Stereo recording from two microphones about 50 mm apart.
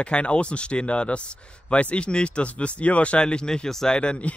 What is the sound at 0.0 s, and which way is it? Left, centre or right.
Speech, left.